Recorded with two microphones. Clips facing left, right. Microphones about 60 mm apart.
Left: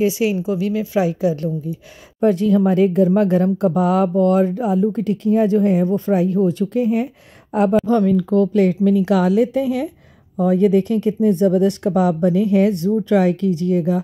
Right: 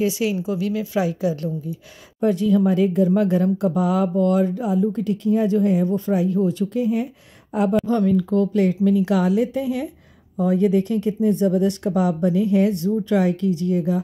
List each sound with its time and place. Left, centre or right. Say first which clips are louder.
0.0 s a woman's voice: left 4 dB; left
2.1 s speech: left 3 dB; left